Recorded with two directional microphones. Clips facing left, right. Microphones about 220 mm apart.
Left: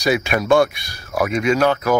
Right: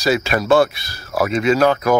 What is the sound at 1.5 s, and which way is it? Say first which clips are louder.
Speech: right 2 dB; 40° right (ahead or behind).